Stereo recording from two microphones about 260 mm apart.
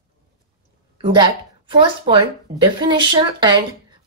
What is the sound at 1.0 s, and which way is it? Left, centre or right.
Speech, centre.